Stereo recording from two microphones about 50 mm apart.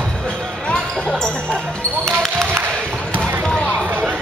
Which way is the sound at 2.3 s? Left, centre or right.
Right.